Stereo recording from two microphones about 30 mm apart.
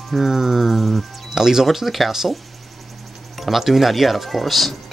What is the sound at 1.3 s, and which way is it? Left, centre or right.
Speech, centre.